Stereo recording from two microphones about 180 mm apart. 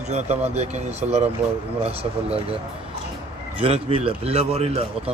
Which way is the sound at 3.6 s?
30° right (ahead or behind).